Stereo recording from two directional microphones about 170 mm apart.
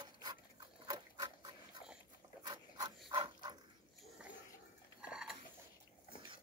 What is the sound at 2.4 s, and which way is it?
Dog, 25° right (ahead or behind).